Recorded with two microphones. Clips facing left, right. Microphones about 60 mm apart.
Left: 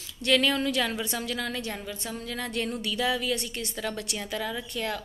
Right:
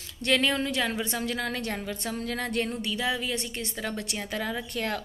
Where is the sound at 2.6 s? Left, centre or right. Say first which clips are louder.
Left 1 dB; right.